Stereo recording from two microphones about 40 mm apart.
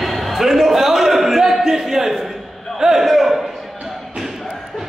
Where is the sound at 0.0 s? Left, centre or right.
Centre.